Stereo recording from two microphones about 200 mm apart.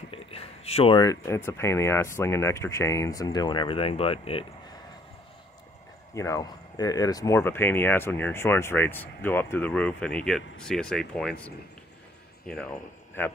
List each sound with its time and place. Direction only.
0.1 s speech: 30° left (ahead or behind)
6.1 s speech: 15° left (ahead or behind)